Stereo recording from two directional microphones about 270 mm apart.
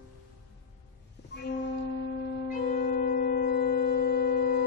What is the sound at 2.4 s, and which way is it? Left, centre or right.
Music, left.